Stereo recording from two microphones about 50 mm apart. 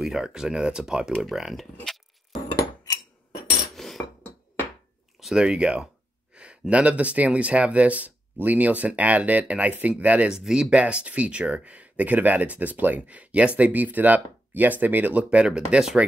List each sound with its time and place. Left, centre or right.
0.0 s speech: centre
3.7 s cutlery: centre
5.3 s speech: centre
10.3 s speech: centre; by 15.2 s right
15.4 s speech: centre